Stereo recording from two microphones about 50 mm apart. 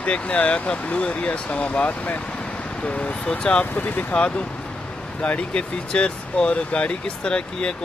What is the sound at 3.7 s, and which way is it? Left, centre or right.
Speech, left.